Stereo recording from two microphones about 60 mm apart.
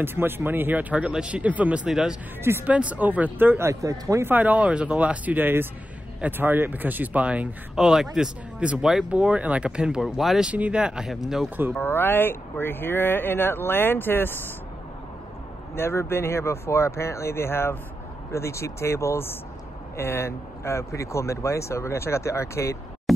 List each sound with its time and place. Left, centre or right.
0.0 s speech: right
1.9 s speech: centre
2.6 s speech: right
3.8 s speech: right
4.4 s speech: right
7.7 s speech: centre
8.5 s speech: centre
10.4 s speech: right
11.8 s speech: left
15.7 s speech: left
23.1 s a sound: centre